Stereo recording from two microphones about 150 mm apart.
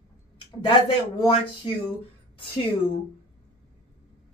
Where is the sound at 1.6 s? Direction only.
40° left (ahead or behind).